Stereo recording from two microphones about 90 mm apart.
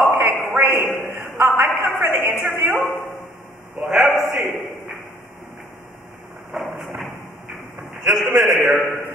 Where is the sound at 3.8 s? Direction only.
Centre (ahead or behind).